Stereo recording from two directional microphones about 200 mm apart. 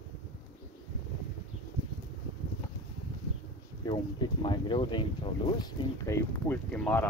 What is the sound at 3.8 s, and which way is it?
Speech, 20° left (ahead or behind).